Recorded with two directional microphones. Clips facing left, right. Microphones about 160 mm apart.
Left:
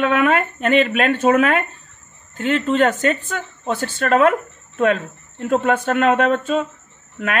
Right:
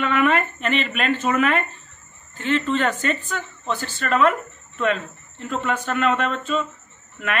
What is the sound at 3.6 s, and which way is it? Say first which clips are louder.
Speech: left 7 dB; 60° left (ahead or behind).